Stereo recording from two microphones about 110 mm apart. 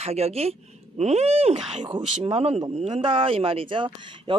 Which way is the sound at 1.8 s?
45° right (ahead or behind).